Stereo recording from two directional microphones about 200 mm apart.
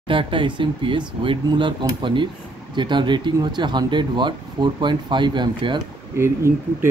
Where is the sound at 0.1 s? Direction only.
25° right (ahead or behind).